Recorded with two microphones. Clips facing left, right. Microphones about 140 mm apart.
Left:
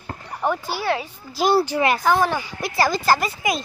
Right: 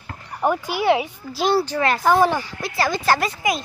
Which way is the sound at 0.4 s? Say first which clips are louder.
Right 3 dB; 15° right (ahead or behind).